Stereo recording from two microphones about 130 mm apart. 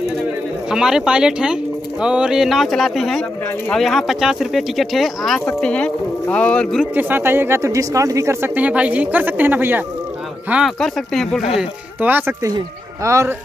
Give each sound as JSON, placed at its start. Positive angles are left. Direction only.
{"t": 0.7, "sound": "speech", "side_deg": -5}
{"t": 7.0, "sound": "a woman's voice", "side_deg": -15}
{"t": 10.5, "sound": "speech", "side_deg": 0}
{"t": 12.0, "sound": "a woman's voice", "side_deg": -15}
{"t": 12.4, "sound": "speech", "side_deg": -25}